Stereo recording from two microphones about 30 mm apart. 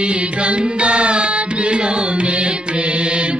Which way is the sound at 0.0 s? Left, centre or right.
Right.